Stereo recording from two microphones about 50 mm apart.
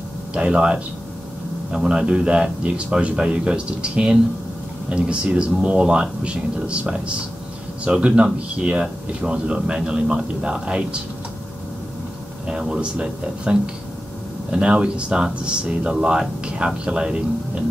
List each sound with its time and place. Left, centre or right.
0.3 s speech: centre
12.4 s speech: centre